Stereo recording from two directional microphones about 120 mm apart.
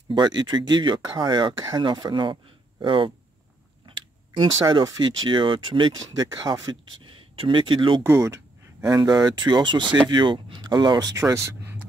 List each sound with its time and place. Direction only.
0.1 s speech: 35° right (ahead or behind)
3.8 s a sound: 45° right (ahead or behind)
4.8 s speech: 35° right (ahead or behind)
8.0 s speech: 20° right (ahead or behind)